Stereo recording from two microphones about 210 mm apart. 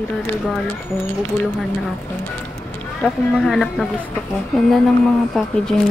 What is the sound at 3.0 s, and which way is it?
Speech, centre (ahead or behind).